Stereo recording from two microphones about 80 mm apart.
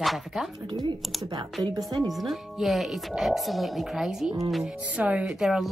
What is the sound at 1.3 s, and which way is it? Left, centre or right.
Speech, right.